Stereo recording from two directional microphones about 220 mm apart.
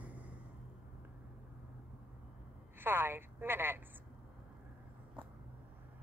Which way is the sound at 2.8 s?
10° right (ahead or behind).